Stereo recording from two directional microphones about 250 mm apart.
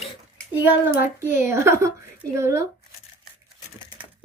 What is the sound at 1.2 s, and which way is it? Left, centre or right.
A woman's voice, centre.